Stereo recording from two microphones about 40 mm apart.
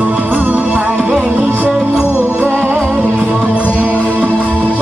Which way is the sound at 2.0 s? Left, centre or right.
Left.